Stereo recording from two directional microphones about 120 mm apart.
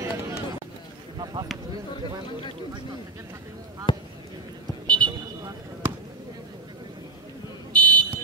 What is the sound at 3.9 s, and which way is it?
Basketball bounce, 40° left (ahead or behind).